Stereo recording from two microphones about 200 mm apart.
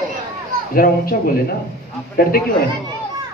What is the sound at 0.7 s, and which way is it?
Speech, 45° left (ahead or behind).